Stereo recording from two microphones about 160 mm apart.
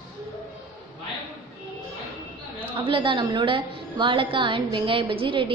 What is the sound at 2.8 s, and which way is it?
A woman's voice, 30° right (ahead or behind).